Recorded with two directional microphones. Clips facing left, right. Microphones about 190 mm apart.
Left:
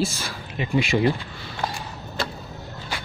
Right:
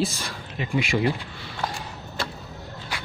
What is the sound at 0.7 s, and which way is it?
Speech, 30° left (ahead or behind).